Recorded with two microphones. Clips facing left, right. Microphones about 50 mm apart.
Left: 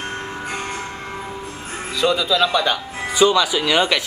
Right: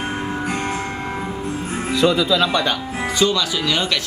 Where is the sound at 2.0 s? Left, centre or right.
Centre.